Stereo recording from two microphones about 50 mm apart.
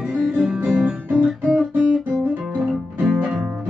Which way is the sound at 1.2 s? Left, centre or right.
Centre.